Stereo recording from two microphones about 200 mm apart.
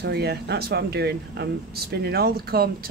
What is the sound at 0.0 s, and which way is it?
Speech, 55° right (ahead or behind).